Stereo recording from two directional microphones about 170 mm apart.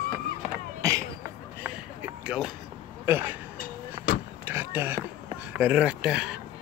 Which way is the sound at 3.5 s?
55° left (ahead or behind).